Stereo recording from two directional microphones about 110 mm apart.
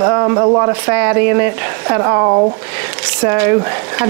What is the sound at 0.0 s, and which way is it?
Speech, 30° right (ahead or behind).